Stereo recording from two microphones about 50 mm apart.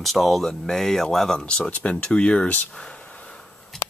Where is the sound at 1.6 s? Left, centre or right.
Left.